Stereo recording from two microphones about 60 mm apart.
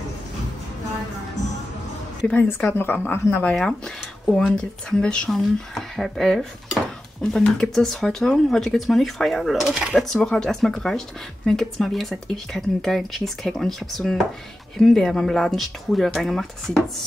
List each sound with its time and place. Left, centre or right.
2.8 s speech: left
3.5 s speech: centre
5.3 s speech: centre
9.9 s speech: centre